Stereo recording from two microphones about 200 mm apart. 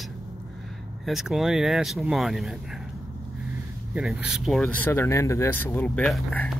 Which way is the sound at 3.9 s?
5° right (ahead or behind).